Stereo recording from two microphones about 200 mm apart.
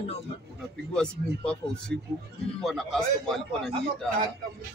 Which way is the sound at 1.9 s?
55° right (ahead or behind).